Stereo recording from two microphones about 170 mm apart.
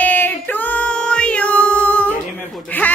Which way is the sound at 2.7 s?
10° left (ahead or behind).